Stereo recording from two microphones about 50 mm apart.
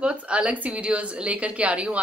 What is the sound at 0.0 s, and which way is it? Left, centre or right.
A woman's voice, right.